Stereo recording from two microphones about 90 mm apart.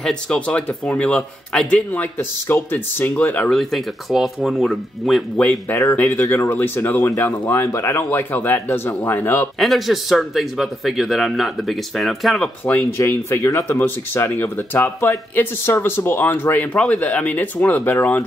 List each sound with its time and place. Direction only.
0.0 s a man's voice: 10° left (ahead or behind)
1.9 s speech: 20° left (ahead or behind)
3.4 s speech: centre (ahead or behind)
6.0 s speech: 30° left (ahead or behind)
9.6 s speech: centre (ahead or behind)
12.9 s speech: 30° left (ahead or behind)